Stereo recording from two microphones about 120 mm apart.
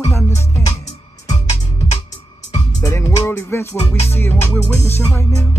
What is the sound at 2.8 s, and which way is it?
Music, 25° left (ahead or behind).